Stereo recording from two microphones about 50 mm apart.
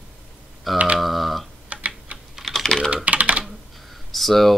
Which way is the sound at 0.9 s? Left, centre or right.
Centre.